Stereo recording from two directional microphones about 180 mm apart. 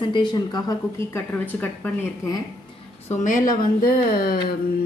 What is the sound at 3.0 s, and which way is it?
Speech, 45° left (ahead or behind).